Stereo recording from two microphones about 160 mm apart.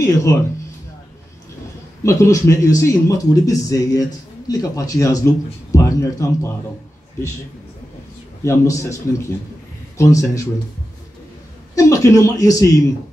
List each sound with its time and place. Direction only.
0.0 s speech: 20° left (ahead or behind)
2.0 s speech: 20° left (ahead or behind)
8.5 s speech: 20° left (ahead or behind)
11.7 s speech: 20° left (ahead or behind)